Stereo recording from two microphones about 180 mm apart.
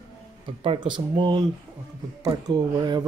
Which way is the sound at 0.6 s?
30° right (ahead or behind).